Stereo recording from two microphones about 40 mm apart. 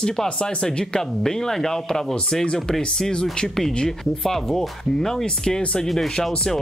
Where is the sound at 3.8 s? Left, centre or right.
Centre.